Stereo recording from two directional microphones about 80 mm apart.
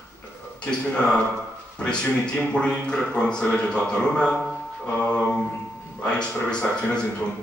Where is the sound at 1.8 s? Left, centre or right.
Centre.